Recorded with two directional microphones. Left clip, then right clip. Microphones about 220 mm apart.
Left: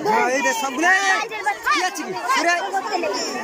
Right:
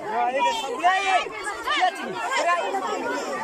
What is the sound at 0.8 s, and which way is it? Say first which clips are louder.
Chatter: left 3 dB; 45° left (ahead or behind).